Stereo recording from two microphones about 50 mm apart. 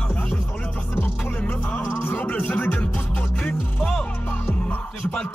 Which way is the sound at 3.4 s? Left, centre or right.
Centre.